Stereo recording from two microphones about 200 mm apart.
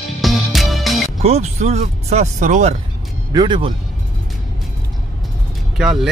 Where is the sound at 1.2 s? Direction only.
35° right (ahead or behind).